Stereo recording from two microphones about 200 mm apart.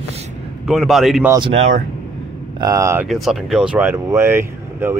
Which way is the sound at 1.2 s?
25° right (ahead or behind).